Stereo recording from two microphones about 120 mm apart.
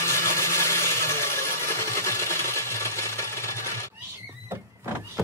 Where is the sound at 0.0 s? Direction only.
25° left (ahead or behind).